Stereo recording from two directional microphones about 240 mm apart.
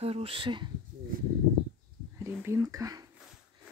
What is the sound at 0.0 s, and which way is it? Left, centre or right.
Speech, right.